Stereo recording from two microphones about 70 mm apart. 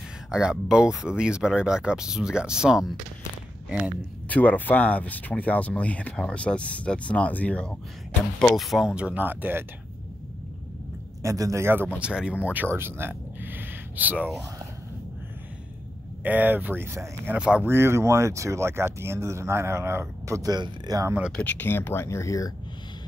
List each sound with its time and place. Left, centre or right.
0.3 s speech: centre
4.3 s speech: left
8.5 s speech: centre
9.2 s speech: right
11.2 s speech: right
11.6 s speech: right
12.0 s speech: centre
12.7 s a sound: right
16.2 s speech: right
17.4 s speech: centre
17.6 s speech: right
20.4 s speech: right
21.4 s speech: left
21.6 s speech: left